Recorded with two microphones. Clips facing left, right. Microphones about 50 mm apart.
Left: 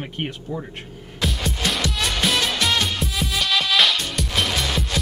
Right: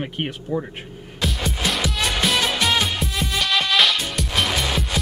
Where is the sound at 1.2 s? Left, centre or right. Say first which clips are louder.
Even; centre.